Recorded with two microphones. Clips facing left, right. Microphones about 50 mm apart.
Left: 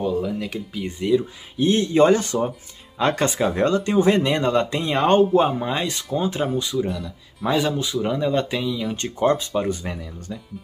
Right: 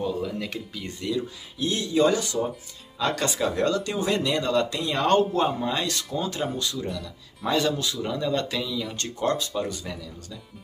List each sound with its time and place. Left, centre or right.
0.0 s a sound: centre
0.7 s speech: left
1.7 s speech: left